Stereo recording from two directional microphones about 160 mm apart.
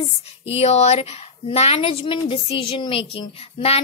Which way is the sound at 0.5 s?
40° left (ahead or behind).